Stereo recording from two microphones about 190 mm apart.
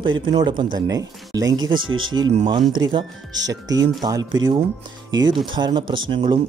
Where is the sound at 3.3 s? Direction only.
70° right (ahead or behind).